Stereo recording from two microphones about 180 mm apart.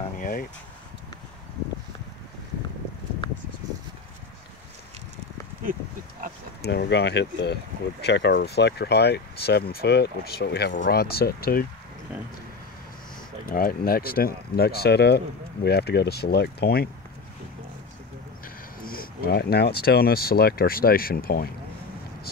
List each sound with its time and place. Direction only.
0.2 s a sound: 55° left (ahead or behind)
6.6 s speech: 65° left (ahead or behind)
13.5 s speech: 55° left (ahead or behind)
18.4 s speech: 55° left (ahead or behind)